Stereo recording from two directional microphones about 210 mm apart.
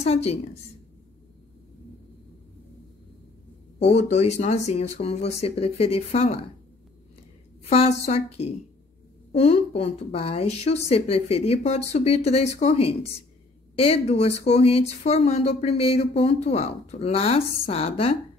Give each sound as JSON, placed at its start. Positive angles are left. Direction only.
{"t": 0.0, "sound": "a woman's voice", "side_deg": 30}
{"t": 3.8, "sound": "speech", "side_deg": 30}
{"t": 8.0, "sound": "speech", "side_deg": 30}